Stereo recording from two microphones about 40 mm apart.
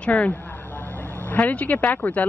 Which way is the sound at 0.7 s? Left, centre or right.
Left.